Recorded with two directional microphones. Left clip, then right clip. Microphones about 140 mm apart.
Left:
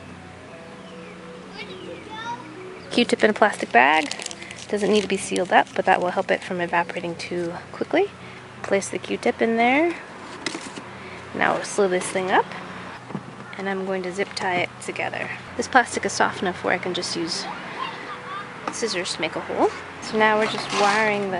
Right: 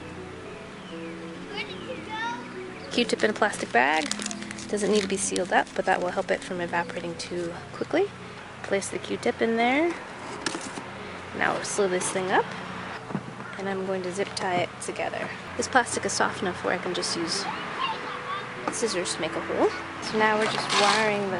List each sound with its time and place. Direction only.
2.9 s speech: 20° left (ahead or behind)
4.0 s speech: 5° right (ahead or behind)
4.7 s speech: 20° left (ahead or behind)
11.3 s speech: 25° left (ahead or behind)
13.6 s speech: 20° left (ahead or behind)
18.7 s speech: 10° left (ahead or behind)
19.6 s speech: 25° left (ahead or behind)